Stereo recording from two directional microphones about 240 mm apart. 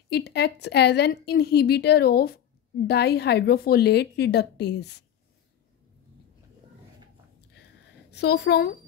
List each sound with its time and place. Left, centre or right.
0.1 s a woman's voice: left
8.1 s a woman's voice: left